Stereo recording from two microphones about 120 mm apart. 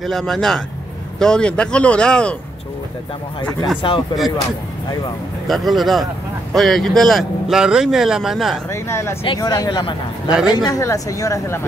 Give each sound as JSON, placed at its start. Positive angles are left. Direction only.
{"t": 0.0, "sound": "speech", "side_deg": 0}
{"t": 3.8, "sound": "speech", "side_deg": 40}
{"t": 5.5, "sound": "speech", "side_deg": 0}
{"t": 8.6, "sound": "speech", "side_deg": 20}
{"t": 9.4, "sound": "speech", "side_deg": 30}